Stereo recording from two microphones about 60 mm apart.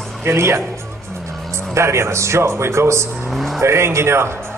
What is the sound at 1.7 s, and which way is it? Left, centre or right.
A man's voice, right.